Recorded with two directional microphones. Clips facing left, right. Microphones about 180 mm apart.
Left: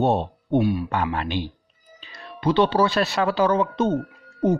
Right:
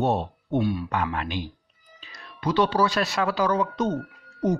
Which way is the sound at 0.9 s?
30° left (ahead or behind).